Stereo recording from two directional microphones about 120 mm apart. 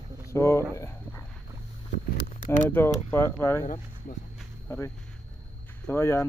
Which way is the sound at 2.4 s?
90° left.